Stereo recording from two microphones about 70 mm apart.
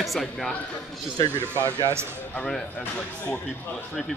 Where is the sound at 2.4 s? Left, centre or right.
Centre.